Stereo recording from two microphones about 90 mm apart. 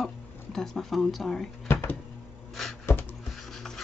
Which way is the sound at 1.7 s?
25° left (ahead or behind).